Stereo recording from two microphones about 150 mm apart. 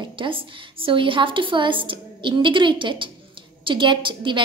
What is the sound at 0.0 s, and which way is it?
A woman's voice, 35° right (ahead or behind).